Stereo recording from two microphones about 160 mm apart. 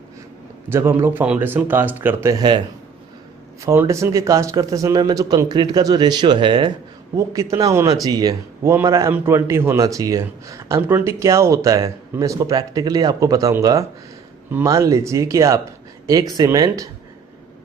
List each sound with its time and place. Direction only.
0.7 s speech: 15° right (ahead or behind)
3.6 s speech: 20° right (ahead or behind)